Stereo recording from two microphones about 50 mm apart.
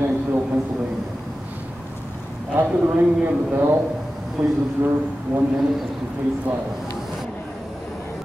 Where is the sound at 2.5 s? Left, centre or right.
Right.